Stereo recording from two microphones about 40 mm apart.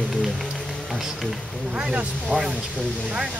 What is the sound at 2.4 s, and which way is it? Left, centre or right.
Speech, centre.